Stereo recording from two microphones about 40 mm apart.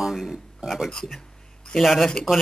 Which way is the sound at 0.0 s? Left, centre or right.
Centre.